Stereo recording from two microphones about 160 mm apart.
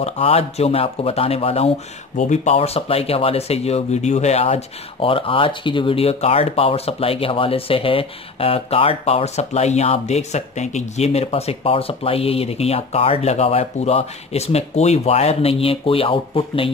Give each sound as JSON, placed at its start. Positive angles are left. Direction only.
{"t": 0.0, "sound": "speech", "side_deg": 40}